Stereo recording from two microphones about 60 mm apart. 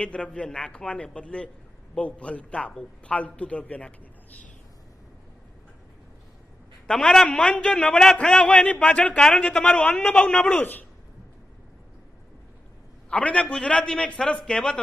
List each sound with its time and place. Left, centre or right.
0.0 s a man's voice: centre
6.9 s a man's voice: centre
10.6 s a man's voice: left
13.1 s a man's voice: left